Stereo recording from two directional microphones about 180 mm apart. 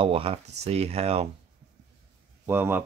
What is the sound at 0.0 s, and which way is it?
Speech, 30° right (ahead or behind).